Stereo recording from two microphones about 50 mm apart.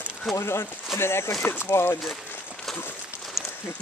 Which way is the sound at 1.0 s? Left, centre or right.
Left.